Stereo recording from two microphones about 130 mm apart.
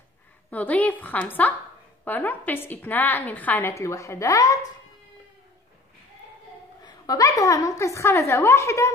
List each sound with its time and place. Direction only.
0.5 s a woman's voice: 10° left (ahead or behind)
6.8 s a woman's voice: 30° left (ahead or behind)